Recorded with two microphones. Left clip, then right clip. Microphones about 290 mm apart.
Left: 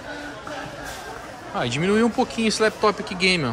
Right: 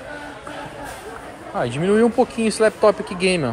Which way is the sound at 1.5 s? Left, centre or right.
Centre.